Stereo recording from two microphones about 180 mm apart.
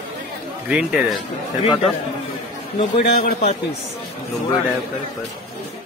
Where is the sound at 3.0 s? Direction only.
55° left (ahead or behind).